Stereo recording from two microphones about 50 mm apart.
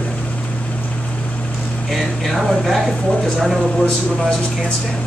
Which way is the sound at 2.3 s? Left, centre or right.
Centre.